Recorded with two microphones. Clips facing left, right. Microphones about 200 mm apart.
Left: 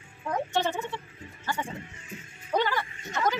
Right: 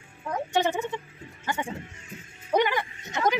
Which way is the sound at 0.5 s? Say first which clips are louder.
Right 7 dB; 15° right (ahead or behind).